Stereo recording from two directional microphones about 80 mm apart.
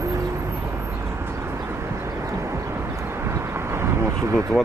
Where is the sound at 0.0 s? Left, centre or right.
Right.